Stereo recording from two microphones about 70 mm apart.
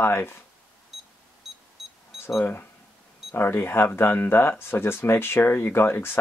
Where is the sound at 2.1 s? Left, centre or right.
Centre.